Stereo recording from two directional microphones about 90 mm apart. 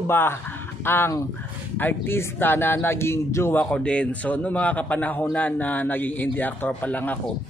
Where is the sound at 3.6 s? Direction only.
10° left (ahead or behind).